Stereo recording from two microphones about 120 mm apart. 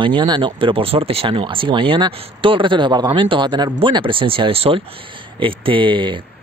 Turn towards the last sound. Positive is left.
turn(degrees=-45)  # may be behind; listen again after turning